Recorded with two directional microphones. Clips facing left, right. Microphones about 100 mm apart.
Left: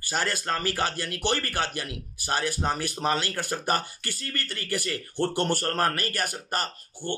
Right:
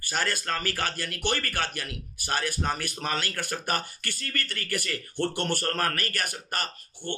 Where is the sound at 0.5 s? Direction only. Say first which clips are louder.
Left 3 dB; 30° left (ahead or behind).